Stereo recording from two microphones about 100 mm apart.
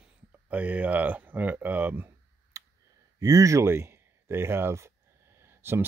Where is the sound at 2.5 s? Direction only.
30° right (ahead or behind).